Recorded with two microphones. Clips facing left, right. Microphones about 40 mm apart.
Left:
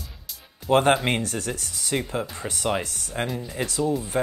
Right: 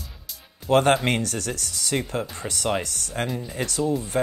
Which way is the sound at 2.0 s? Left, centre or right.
Centre.